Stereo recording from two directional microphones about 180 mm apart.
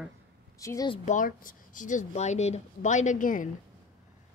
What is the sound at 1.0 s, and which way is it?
Speech, 45° left (ahead or behind).